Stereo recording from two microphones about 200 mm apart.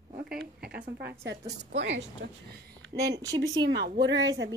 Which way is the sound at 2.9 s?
20° right (ahead or behind).